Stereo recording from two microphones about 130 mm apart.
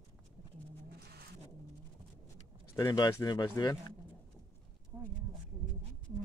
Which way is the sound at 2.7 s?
30° left (ahead or behind).